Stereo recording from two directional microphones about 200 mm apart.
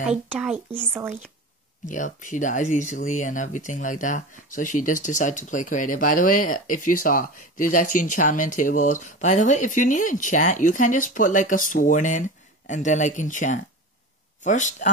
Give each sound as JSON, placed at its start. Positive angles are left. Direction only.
{"t": 0.3, "sound": "speech", "side_deg": -5}
{"t": 1.9, "sound": "speech", "side_deg": 40}